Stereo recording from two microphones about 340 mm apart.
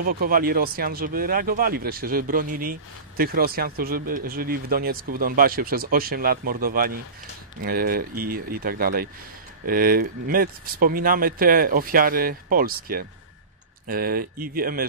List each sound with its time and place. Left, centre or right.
0.0 s speech: right